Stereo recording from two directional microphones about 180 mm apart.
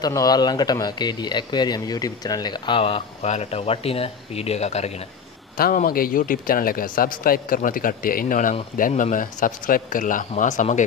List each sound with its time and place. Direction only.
0.0 s speech: 20° left (ahead or behind); by 4.9 s 40° left (ahead or behind)
5.6 s a man's voice: 50° left (ahead or behind)